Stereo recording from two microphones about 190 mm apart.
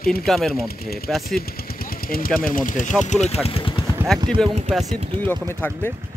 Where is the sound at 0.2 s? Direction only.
Centre (ahead or behind).